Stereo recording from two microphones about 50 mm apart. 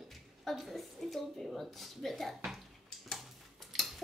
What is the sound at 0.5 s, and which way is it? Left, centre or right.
A child's voice, centre.